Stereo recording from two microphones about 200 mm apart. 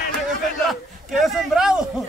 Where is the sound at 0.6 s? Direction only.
Centre (ahead or behind).